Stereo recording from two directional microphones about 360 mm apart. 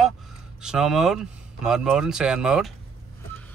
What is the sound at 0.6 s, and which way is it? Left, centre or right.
Speech, centre.